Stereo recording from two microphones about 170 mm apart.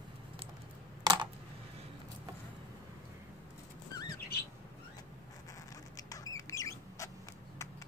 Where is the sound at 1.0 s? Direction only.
30° right (ahead or behind).